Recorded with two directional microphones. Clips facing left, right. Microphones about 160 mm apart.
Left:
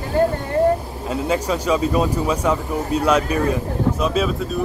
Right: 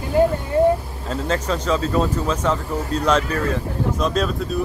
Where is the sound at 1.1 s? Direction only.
10° left (ahead or behind).